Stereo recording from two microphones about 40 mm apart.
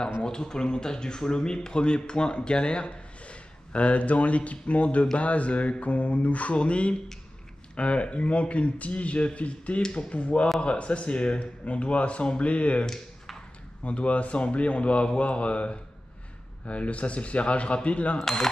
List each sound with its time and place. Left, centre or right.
0.2 s speech: centre
12.8 s a sound: centre
13.8 s speech: left
18.2 s speech: centre